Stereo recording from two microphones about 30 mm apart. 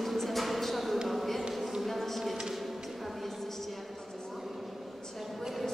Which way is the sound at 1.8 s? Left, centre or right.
Centre.